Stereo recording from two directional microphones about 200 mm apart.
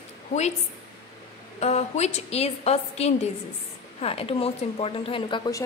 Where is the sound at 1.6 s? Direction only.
35° left (ahead or behind).